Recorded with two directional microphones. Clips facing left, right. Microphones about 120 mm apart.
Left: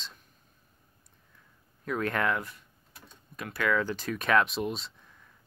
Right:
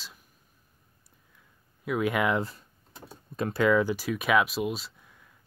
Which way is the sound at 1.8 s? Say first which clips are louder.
Right 3 dB; 10° right (ahead or behind).